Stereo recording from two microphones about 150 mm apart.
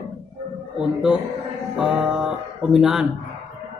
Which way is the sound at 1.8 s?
5° right (ahead or behind).